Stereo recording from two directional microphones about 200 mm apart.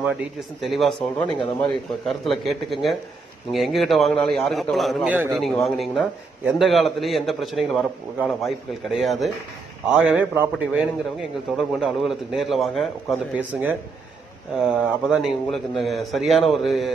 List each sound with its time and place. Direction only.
0.6 s a man's voice: centre (ahead or behind)
1.2 s speech: 25° left (ahead or behind)
2.0 s a man's voice: centre (ahead or behind)